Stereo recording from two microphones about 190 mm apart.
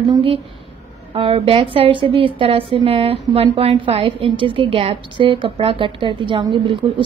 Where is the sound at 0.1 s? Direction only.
30° right (ahead or behind).